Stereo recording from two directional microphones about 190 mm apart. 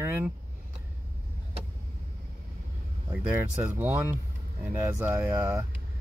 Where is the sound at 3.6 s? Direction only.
10° right (ahead or behind).